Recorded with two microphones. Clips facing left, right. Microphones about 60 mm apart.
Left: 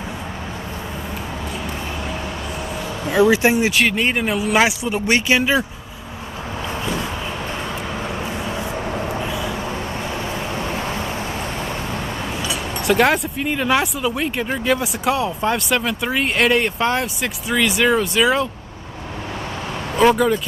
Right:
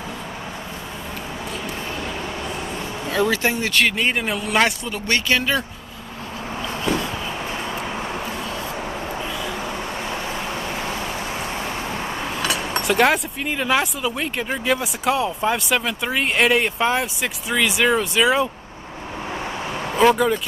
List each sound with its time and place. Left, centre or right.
3.1 s speech: centre
3.8 s speech: centre
4.8 s speech: centre
12.4 s a sound: right
12.8 s speech: centre
20.0 s speech: centre